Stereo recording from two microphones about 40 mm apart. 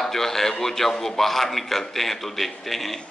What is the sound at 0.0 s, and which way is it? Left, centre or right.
A man's voice, centre.